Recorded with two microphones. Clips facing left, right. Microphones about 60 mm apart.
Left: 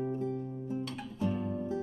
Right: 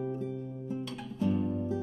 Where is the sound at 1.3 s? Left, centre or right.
Centre.